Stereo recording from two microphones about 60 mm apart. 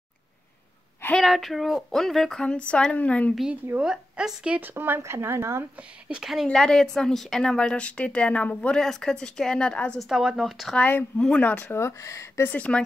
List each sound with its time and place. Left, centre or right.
1.2 s a woman's voice: centre; by 3.3 s left
3.8 s a woman's voice: centre
4.6 s speech: right
5.8 s speech: centre
6.4 s a woman's voice: centre
8.8 s a woman's voice: centre
9.9 s a woman's voice: centre
10.8 s speech: left
11.1 s a woman's voice: centre
11.4 s speech: left
12.0 s speech: left
12.5 s speech: left